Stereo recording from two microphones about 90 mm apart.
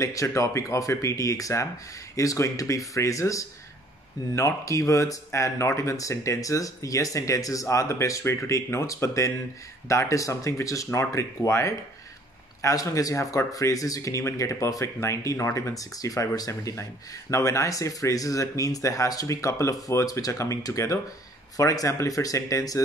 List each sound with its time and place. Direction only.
0.0 s speech: 35° left (ahead or behind)